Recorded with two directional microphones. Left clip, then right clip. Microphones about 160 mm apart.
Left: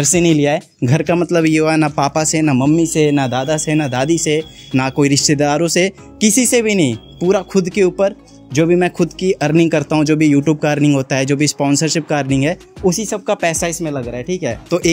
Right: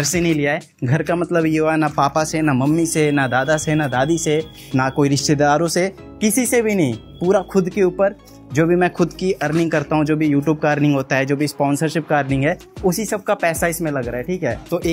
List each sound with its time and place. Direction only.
0.0 s speech: 70° left (ahead or behind)
1.3 s speech: 45° left (ahead or behind)
9.4 s speech: 90° left
9.7 s a man's voice: 55° left (ahead or behind)
10.3 s speech: 45° left (ahead or behind)
12.8 s speech: 25° left (ahead or behind)
13.3 s speech: 55° left (ahead or behind)
13.7 s speech: 20° left (ahead or behind)